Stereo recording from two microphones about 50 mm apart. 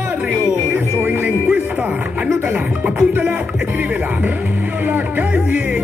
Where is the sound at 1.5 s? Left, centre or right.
Centre; by 5.2 s right.